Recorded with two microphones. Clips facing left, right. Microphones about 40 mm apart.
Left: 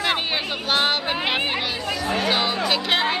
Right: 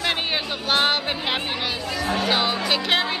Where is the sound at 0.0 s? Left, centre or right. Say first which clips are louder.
Left 1 dB; centre.